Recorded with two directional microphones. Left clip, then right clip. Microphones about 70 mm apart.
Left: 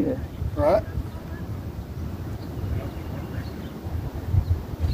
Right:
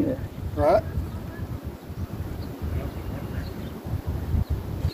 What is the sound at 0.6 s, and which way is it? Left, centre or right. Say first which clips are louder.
Speech: even; left.